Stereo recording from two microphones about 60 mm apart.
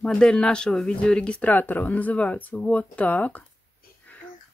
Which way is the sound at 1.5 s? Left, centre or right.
Left.